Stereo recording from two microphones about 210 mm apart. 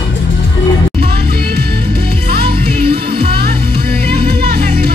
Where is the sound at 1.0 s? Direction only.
45° right (ahead or behind).